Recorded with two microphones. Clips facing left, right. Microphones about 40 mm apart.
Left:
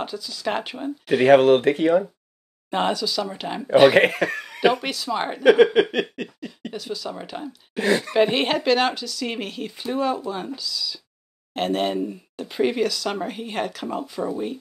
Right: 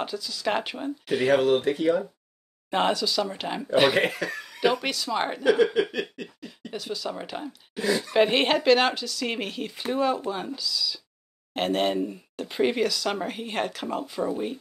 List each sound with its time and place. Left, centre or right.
0.0 s speech: centre
1.2 s a sound: left
2.7 s speech: centre
3.9 s speech: left
4.8 s speech: centre
5.4 s a sound: left
6.7 s speech: centre
7.7 s a sound: left
8.1 s speech: centre